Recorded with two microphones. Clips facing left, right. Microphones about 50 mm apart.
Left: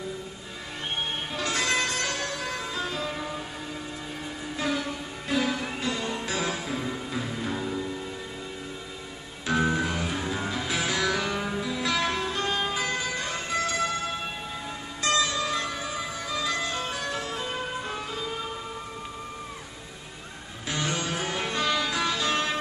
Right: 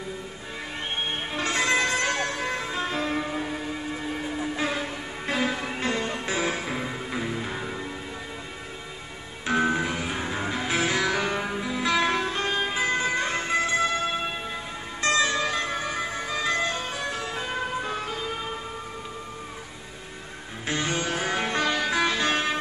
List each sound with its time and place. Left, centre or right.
1.3 s music: right
4.6 s music: right
5.8 s music: right
9.5 s music: right
20.6 s music: right